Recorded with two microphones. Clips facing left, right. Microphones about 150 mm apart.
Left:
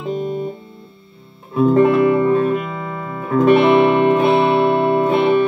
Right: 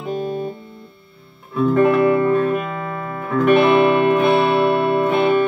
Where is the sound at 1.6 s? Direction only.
25° left (ahead or behind).